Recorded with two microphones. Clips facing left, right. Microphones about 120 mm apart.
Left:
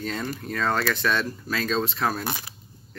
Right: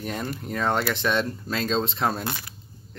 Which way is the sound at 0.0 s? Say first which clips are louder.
Even; 15° right (ahead or behind).